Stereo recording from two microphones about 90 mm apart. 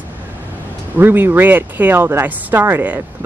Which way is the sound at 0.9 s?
25° right (ahead or behind).